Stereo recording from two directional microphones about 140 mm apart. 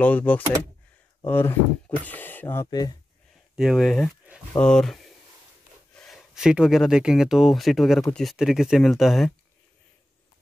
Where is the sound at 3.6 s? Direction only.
Centre (ahead or behind).